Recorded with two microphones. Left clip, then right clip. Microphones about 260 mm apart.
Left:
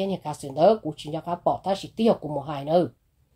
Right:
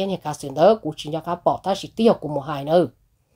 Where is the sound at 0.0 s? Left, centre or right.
Right.